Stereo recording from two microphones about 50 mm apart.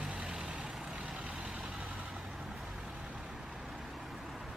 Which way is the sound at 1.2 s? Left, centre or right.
Centre.